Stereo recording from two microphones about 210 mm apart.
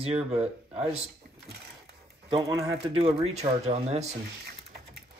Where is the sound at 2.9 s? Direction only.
25° right (ahead or behind).